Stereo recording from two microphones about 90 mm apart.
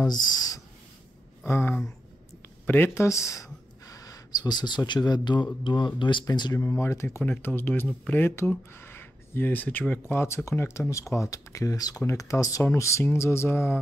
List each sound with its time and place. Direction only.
0.0 s speech: 45° left (ahead or behind)
1.4 s speech: 25° left (ahead or behind); by 6.2 s 65° left (ahead or behind)
6.2 s speech: 50° left (ahead or behind)
6.6 s speech: 30° left (ahead or behind)